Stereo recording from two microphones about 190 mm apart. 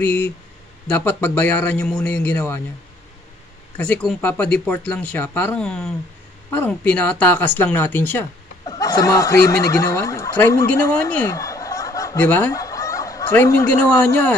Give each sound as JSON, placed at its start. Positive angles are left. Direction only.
{"t": 0.0, "sound": "speech", "side_deg": 10}
{"t": 3.7, "sound": "speech", "side_deg": 5}